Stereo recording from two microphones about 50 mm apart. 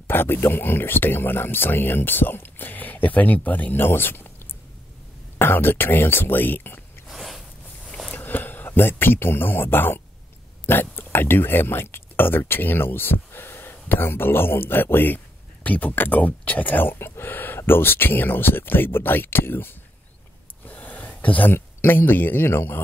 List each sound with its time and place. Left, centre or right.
0.0 s speech: left
3.8 s speech: left
5.4 s speech: left
7.1 s a sound: centre
8.1 s speech: left
17.1 s a sound: left
17.6 s speech: left
20.6 s a sound: left
21.5 s speech: left